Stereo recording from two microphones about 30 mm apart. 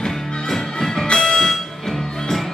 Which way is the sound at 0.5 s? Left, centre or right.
Centre.